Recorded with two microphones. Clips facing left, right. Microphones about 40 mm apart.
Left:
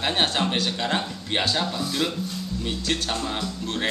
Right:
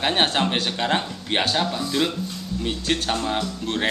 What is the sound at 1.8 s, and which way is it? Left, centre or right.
Speech, centre.